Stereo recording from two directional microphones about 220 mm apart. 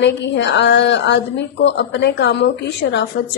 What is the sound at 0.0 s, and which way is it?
A woman's voice, 55° left (ahead or behind).